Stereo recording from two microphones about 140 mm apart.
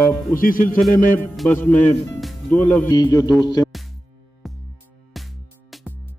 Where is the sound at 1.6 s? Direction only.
10° left (ahead or behind).